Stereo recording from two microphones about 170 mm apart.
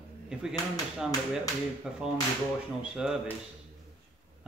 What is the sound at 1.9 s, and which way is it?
Speech, centre (ahead or behind).